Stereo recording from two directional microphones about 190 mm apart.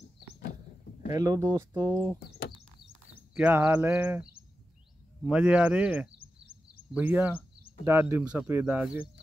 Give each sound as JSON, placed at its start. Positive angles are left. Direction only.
{"t": 1.1, "sound": "speech", "side_deg": -20}
{"t": 3.2, "sound": "speech", "side_deg": -10}